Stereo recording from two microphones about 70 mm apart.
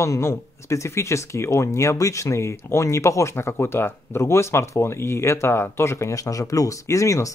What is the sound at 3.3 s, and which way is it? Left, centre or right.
Speech, left.